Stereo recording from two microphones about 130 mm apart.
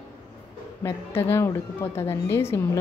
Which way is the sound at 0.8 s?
20° left (ahead or behind).